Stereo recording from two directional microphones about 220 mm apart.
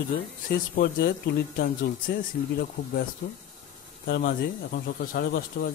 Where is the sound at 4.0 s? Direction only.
45° left (ahead or behind).